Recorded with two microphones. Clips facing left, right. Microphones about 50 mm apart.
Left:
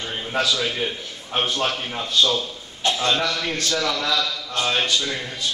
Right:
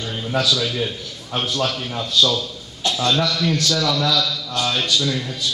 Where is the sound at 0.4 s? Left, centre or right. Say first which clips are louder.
Right 1 dB; left.